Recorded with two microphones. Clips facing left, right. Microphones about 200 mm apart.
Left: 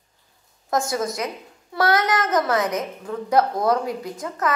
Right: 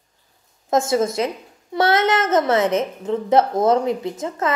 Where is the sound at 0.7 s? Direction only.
25° right (ahead or behind).